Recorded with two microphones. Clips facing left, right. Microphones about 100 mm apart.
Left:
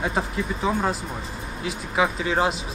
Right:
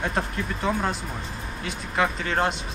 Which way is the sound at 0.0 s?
5° left (ahead or behind).